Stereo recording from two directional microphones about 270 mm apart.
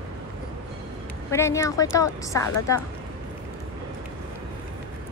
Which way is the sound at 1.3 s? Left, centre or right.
Centre.